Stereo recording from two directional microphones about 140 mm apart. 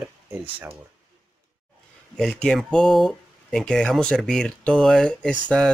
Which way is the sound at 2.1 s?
5° left (ahead or behind).